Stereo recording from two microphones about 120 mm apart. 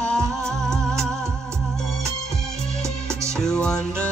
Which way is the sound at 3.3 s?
5° left (ahead or behind).